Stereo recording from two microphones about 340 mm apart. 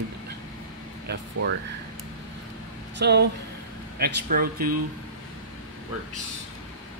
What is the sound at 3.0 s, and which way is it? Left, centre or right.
Speech, right.